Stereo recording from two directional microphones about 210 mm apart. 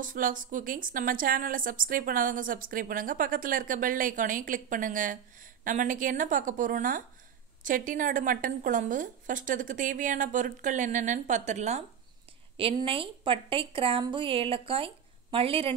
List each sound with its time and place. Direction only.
0.0 s a woman's voice: 40° right (ahead or behind)